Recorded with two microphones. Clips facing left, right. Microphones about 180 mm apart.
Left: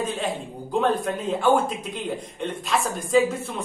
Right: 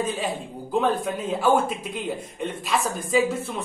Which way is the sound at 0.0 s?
Centre (ahead or behind).